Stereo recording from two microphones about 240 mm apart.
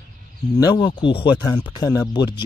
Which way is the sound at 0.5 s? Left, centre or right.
Centre.